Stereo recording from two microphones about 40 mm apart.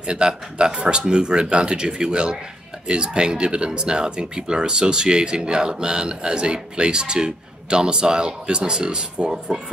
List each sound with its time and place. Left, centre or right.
0.0 s speech: right